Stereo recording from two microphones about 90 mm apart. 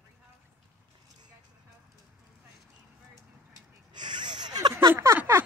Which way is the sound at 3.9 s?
60° right (ahead or behind).